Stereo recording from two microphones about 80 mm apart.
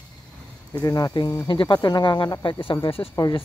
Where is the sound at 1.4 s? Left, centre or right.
Left.